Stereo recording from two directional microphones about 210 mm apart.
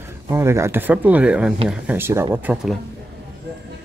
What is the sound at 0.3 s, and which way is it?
Speech, 15° right (ahead or behind).